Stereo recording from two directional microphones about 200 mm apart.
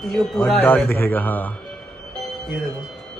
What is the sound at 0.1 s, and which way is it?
Mantra, centre (ahead or behind).